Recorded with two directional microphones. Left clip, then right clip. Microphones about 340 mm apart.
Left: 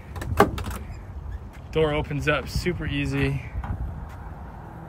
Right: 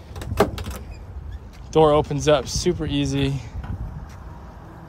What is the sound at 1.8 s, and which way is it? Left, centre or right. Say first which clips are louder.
Speech: right 8 dB; centre.